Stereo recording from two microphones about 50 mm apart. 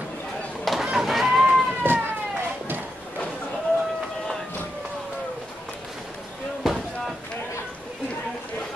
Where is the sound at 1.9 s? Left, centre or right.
Right.